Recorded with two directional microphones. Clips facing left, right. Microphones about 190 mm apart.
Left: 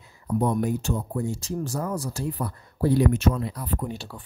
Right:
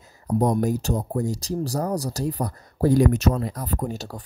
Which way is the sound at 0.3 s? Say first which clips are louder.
Right 3 dB; 40° right (ahead or behind).